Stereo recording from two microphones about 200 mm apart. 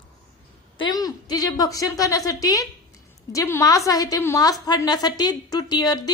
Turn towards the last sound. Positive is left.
turn(degrees=20)  # may be behind; listen again after turning